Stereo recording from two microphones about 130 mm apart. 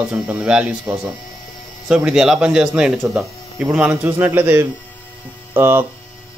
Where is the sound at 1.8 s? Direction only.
5° right (ahead or behind).